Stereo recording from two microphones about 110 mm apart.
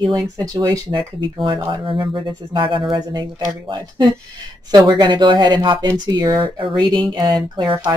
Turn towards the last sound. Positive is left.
turn(degrees=-40)  # may be behind; listen again after turning